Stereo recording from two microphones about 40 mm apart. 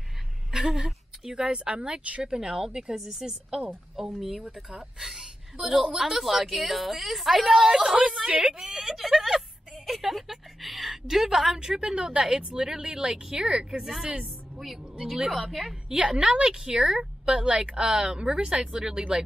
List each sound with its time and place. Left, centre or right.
0.5 s a woman's voice: centre; by 2.3 s right
2.3 s a woman's voice: centre
5.0 s a woman's voice: centre
8.3 s a woman's voice: right
8.7 s a woman's voice: centre
14.6 s a woman's voice: centre
16.0 s a woman's voice: centre